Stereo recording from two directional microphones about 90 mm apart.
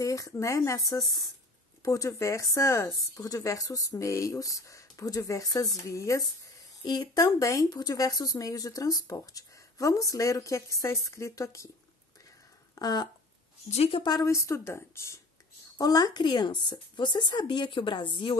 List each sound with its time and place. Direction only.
0.0 s speech: 35° left (ahead or behind)
6.8 s speech: 50° left (ahead or behind); by 11.7 s 35° left (ahead or behind)
12.7 s a sound: 45° left (ahead or behind)
14.0 s speech: 50° left (ahead or behind)
14.3 s speech: 35° left (ahead or behind)
15.8 s speech: 45° left (ahead or behind); by 18.3 s 65° left (ahead or behind)